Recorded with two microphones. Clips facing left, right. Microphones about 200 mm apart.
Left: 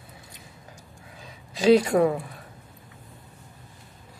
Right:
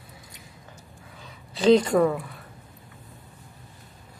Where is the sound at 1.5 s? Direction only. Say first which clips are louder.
Even; 10° left (ahead or behind).